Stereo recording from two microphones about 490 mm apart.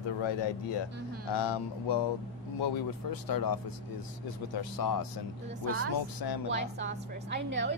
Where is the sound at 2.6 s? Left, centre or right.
Left.